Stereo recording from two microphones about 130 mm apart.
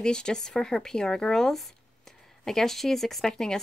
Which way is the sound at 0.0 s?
5° left (ahead or behind).